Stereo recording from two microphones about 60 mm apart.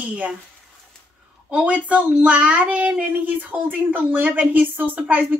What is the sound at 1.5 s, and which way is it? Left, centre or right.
A woman's voice, centre.